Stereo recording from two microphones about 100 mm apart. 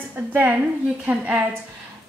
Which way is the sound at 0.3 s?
15° right (ahead or behind).